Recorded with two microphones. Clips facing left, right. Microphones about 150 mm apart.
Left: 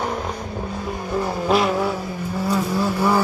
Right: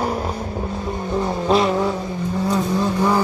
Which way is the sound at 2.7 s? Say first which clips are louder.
Right 1 dB; 20° right (ahead or behind).